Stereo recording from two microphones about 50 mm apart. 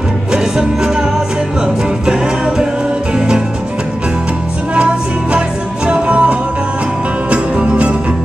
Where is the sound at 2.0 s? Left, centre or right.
Centre.